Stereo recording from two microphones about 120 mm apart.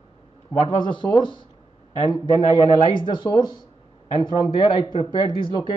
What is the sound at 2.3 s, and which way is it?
Speech, 45° left (ahead or behind).